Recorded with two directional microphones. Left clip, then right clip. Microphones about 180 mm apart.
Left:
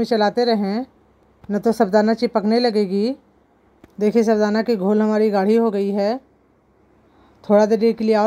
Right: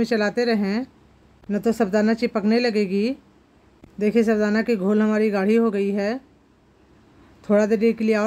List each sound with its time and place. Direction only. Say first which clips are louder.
0.1 s speech: left 7 dB; 10° left (ahead or behind)
4.0 s speech: left 3 dB; 15° left (ahead or behind)
7.4 s speech: left 4 dB; 10° left (ahead or behind)